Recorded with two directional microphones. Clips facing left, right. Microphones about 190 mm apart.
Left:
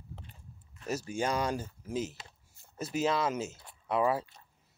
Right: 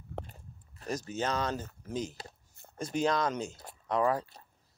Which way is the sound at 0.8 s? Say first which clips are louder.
Left 1 dB; 10° left (ahead or behind).